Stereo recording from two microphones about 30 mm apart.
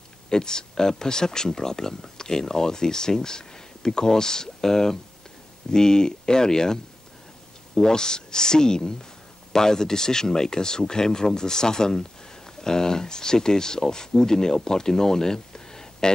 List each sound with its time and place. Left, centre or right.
0.3 s speech: left